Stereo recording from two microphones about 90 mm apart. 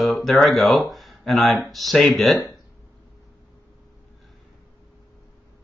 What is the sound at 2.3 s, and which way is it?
Speech, 45° left (ahead or behind).